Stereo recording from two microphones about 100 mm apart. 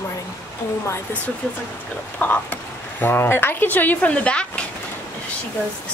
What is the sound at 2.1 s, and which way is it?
A woman's voice, 15° left (ahead or behind).